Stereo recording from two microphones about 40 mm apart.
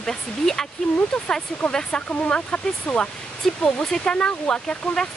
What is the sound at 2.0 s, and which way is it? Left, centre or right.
Speech, left.